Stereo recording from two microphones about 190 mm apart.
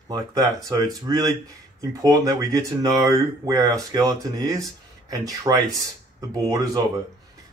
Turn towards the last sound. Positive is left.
turn(degrees=-20)  # may be behind; listen again after turning